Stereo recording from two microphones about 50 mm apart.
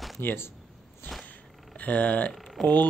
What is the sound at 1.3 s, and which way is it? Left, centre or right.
Purr, left.